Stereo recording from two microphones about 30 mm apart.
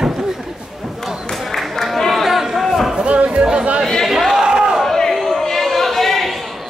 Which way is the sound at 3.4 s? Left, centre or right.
Right.